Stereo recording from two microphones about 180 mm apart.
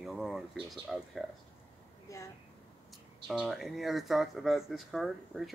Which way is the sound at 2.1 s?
15° left (ahead or behind).